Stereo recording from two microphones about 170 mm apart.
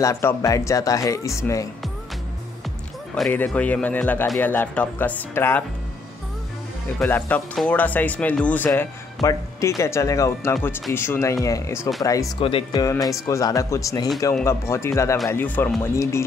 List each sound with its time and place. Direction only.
0.0 s speech: 15° left (ahead or behind)
3.2 s speech: 10° left (ahead or behind)
7.0 s speech: 10° left (ahead or behind)
12.4 s speech: 30° left (ahead or behind)
12.8 s speech: 20° left (ahead or behind)